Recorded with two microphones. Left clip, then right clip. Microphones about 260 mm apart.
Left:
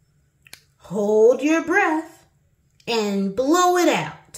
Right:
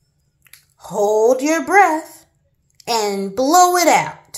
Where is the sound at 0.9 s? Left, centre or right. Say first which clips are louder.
Right 3 dB; right.